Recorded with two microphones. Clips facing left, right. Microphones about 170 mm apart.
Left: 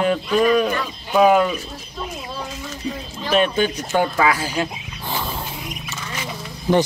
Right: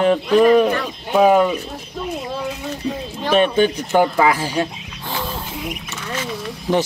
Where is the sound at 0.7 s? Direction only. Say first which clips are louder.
Right 3 dB; 30° right (ahead or behind).